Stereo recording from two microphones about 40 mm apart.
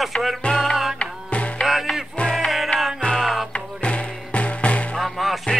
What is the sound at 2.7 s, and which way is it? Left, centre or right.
Music, left.